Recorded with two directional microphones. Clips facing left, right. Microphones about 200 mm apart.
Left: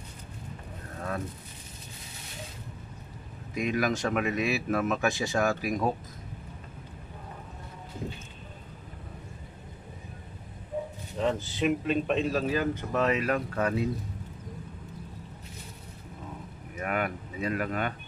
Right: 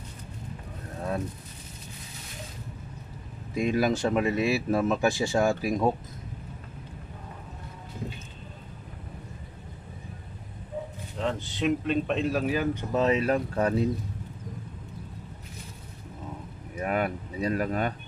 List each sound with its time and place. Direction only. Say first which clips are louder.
3.5 s speech: right 3 dB; 30° right (ahead or behind)
11.1 s speech: left 2 dB; 5° left (ahead or behind)
12.4 s speech: right 1 dB; 15° right (ahead or behind); by 13.8 s 35° right (ahead or behind)
16.8 s speech: right 3 dB; 35° right (ahead or behind)